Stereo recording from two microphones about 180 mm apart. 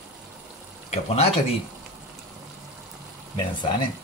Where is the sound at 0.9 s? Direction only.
35° left (ahead or behind).